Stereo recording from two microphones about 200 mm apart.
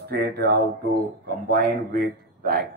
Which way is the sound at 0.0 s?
50° right (ahead or behind).